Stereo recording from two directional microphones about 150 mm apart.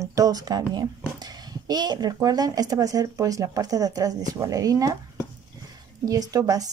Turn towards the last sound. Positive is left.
turn(degrees=-25)  # may be behind; listen again after turning